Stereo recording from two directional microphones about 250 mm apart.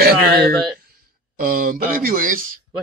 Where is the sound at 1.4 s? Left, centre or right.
Right.